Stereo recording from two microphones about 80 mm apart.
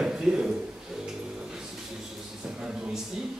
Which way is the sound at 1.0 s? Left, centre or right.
Centre.